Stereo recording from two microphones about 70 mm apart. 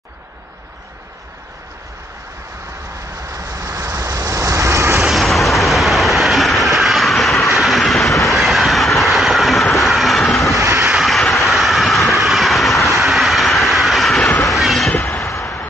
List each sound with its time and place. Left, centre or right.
3.2 s vehicle: right
5.0 s train: centre
7.5 s vehicle: centre
8.2 s train: centre
10.5 s vehicle: right
10.9 s vehicle: centre